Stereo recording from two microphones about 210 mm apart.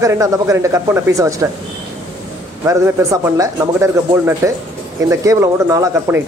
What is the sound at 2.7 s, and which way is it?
Speech, 15° right (ahead or behind).